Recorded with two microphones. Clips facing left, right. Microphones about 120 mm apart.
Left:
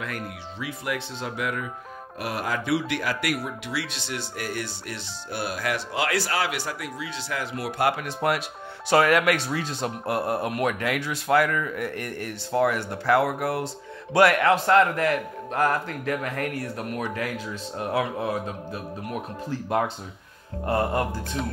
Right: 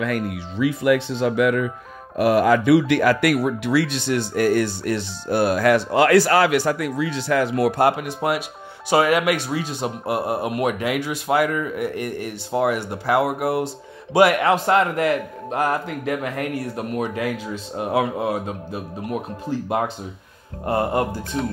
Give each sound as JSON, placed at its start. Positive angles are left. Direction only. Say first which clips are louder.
{"t": 0.0, "sound": "speech", "louder": "right 9 dB", "side_deg": -90}
{"t": 7.9, "sound": "speech", "louder": "right 2 dB", "side_deg": -10}
{"t": 20.6, "sound": "speech", "louder": "right 3 dB", "side_deg": -20}